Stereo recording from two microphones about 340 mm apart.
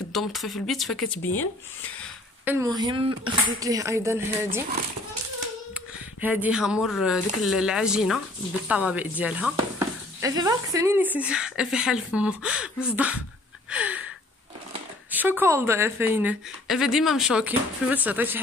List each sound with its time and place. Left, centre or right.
0.1 s a woman's voice: centre
2.4 s speech: centre
6.2 s a woman's voice: centre
13.7 s a sound: centre
15.0 s a woman's voice: centre